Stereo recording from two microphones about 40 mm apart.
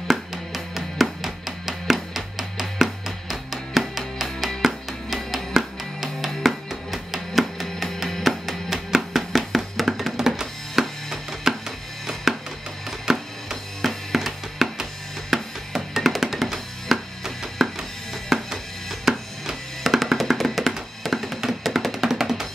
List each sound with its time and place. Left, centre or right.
0.1 s music: centre
13.8 s music: centre
15.3 s drum: centre
15.7 s music: centre
22.1 s music: centre